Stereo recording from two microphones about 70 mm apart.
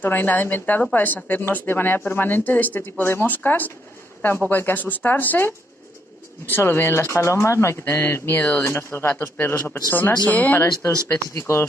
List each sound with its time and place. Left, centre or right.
0.0 s speech: left
11.3 s speech: left